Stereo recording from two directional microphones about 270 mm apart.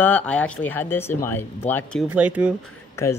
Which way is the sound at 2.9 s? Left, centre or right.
Centre.